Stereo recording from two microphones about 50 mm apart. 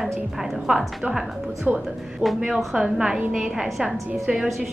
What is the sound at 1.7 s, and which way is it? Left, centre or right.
Speech, right.